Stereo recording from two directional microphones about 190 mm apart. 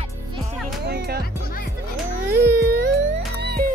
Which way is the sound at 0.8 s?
55° right (ahead or behind).